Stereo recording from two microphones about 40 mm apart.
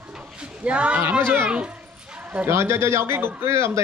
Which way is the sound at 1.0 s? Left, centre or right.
Right.